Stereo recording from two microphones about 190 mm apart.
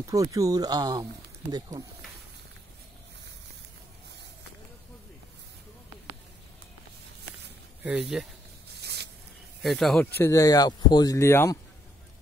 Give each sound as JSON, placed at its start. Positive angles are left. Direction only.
{"t": 0.0, "sound": "speech", "side_deg": -15}
{"t": 7.8, "sound": "speech", "side_deg": -5}
{"t": 8.7, "sound": "a sound", "side_deg": -60}
{"t": 9.6, "sound": "speech", "side_deg": 0}
{"t": 10.2, "sound": "speech", "side_deg": 15}